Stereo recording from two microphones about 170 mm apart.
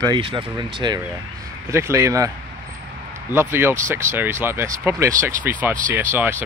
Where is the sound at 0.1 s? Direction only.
30° right (ahead or behind).